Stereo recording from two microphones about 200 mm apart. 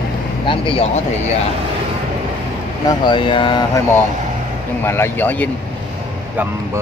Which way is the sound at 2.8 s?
25° left (ahead or behind).